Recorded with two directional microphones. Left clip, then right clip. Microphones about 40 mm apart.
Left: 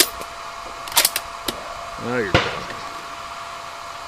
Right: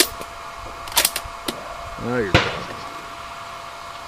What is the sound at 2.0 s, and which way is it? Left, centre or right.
Speech, left.